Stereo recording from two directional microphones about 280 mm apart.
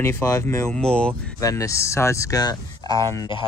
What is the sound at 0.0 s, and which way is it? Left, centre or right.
Speech, centre.